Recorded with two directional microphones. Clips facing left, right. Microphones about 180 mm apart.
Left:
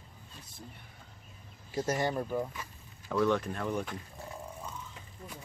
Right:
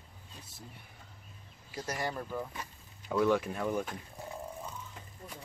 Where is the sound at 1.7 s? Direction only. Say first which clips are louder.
Left 6 dB; 25° left (ahead or behind).